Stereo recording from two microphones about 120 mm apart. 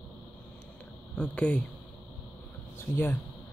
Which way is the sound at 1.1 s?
10° left (ahead or behind).